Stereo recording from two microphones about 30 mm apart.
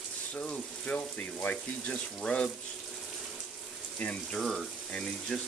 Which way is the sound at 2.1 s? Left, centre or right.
Left.